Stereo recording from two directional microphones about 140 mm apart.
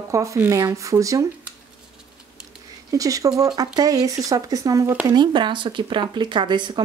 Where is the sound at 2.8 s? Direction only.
25° right (ahead or behind).